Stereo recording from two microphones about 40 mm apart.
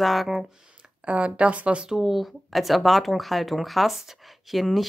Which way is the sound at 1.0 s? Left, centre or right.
Right.